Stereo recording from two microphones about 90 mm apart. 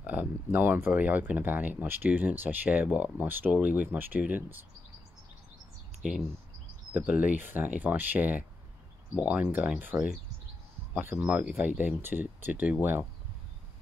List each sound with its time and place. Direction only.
0.0 s speech: 20° right (ahead or behind)
6.9 s speech: 20° right (ahead or behind)